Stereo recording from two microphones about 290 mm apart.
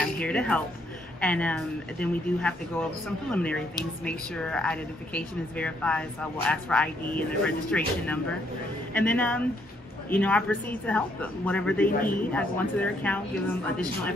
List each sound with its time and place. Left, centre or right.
0.0 s speech: centre
11.9 s a man's voice: left
12.2 s speech: centre